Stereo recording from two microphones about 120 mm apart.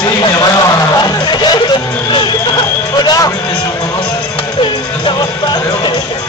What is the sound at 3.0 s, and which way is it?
Music, 30° left (ahead or behind).